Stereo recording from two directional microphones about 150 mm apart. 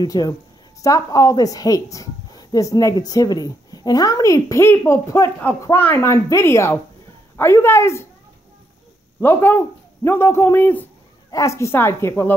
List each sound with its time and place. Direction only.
0.0 s speech: 25° left (ahead or behind)
9.2 s speech: 15° left (ahead or behind)